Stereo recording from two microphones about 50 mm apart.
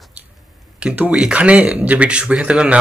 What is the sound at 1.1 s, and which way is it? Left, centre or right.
Speech, centre.